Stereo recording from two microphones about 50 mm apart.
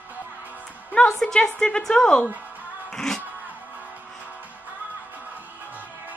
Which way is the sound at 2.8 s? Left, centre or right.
Centre.